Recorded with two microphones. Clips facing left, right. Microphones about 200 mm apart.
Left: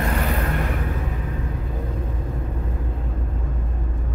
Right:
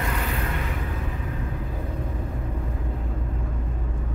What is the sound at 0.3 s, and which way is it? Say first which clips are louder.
Vehicle: left 5 dB; 55° left (ahead or behind).